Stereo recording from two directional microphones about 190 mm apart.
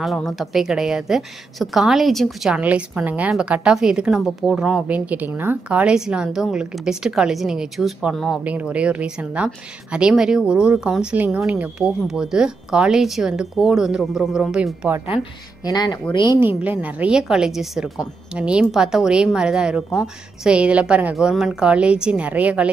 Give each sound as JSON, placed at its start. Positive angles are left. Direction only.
{"t": 0.0, "sound": "a woman's voice", "side_deg": 0}
{"t": 15.6, "sound": "speech", "side_deg": 20}
{"t": 16.3, "sound": "a woman's voice", "side_deg": -10}